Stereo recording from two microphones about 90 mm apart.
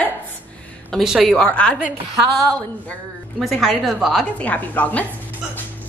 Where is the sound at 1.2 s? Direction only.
10° left (ahead or behind).